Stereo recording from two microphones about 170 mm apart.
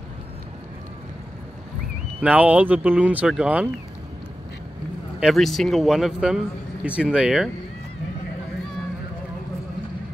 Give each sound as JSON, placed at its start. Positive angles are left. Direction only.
{"t": 2.2, "sound": "speech", "side_deg": -10}
{"t": 5.2, "sound": "speech", "side_deg": 0}